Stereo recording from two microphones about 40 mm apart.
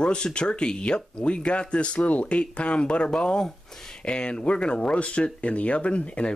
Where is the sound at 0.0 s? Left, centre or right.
Left.